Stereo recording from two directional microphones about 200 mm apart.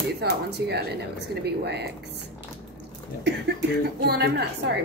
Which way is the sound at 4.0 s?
55° right (ahead or behind).